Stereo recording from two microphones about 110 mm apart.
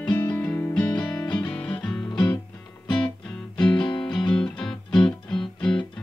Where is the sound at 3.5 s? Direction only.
10° left (ahead or behind).